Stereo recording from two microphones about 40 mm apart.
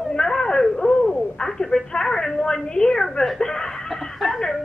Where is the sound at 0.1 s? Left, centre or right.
Centre.